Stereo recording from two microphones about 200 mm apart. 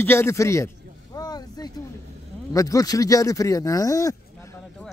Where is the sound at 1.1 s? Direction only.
20° left (ahead or behind).